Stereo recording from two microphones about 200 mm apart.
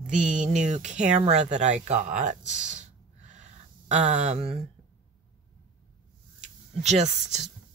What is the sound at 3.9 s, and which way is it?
Speech, 35° right (ahead or behind).